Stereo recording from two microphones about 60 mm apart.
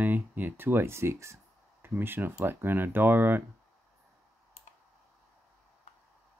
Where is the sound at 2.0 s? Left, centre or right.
Right.